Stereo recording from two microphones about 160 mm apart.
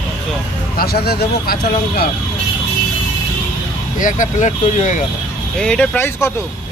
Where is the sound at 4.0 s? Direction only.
50° left (ahead or behind).